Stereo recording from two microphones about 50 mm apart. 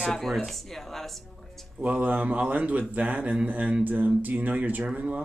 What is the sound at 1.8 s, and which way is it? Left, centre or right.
A man's voice, right.